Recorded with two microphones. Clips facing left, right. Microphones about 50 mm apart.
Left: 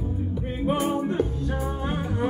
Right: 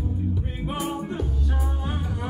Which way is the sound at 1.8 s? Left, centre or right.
Left.